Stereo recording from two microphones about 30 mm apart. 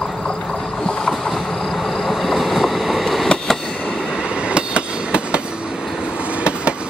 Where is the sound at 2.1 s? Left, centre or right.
Centre.